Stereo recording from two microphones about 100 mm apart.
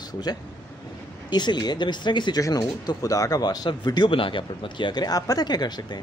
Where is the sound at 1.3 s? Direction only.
50° left (ahead or behind).